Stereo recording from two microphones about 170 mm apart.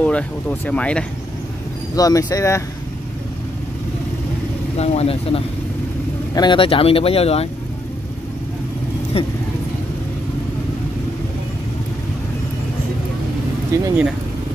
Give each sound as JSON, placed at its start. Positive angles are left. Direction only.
{"t": 0.0, "sound": "speech", "side_deg": 10}
{"t": 2.0, "sound": "speech", "side_deg": 20}
{"t": 4.7, "sound": "speech", "side_deg": 35}
{"t": 9.1, "sound": "speech", "side_deg": 35}
{"t": 13.7, "sound": "speech", "side_deg": -15}